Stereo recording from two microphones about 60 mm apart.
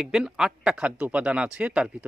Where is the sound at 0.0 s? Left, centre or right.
Centre.